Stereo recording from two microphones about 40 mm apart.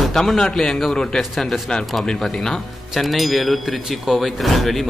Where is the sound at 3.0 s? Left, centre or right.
Centre.